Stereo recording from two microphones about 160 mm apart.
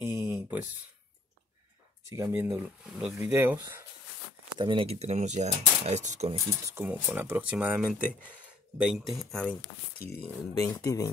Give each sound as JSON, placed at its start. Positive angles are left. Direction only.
{"t": 0.0, "sound": "a sound", "side_deg": -15}
{"t": 2.0, "sound": "speech", "side_deg": -20}
{"t": 4.6, "sound": "speech", "side_deg": -30}
{"t": 6.5, "sound": "speech", "side_deg": -15}
{"t": 10.6, "sound": "speech", "side_deg": 20}